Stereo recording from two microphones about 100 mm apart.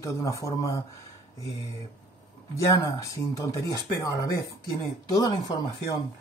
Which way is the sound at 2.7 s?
30° left (ahead or behind).